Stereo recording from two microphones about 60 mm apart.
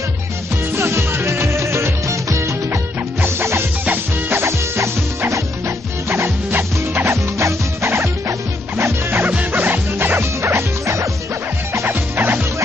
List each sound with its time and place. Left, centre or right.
0.7 s music: right
9.2 s music: right